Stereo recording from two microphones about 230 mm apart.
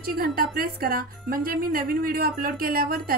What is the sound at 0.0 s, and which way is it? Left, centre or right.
Speech, right.